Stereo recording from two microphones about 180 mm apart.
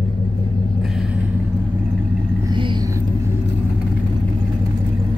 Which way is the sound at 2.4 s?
25° right (ahead or behind).